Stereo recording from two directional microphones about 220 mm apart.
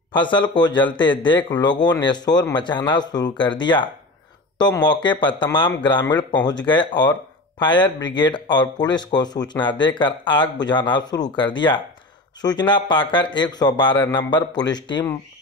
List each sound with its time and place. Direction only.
0.1 s speech: 20° left (ahead or behind)